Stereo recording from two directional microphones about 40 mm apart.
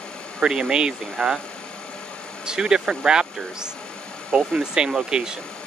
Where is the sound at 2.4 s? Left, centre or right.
Centre.